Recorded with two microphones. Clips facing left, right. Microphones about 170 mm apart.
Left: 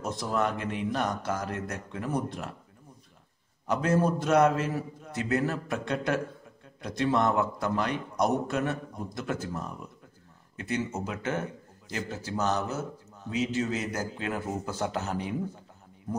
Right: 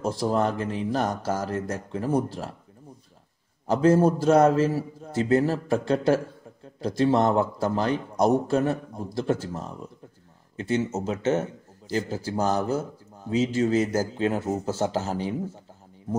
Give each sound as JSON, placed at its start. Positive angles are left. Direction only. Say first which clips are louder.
{"t": 0.0, "sound": "speech", "louder": "right 5 dB", "side_deg": -30}
{"t": 3.6, "sound": "a man's voice", "louder": "right 6 dB", "side_deg": -30}